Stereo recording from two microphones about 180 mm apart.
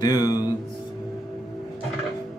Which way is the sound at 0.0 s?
20° left (ahead or behind).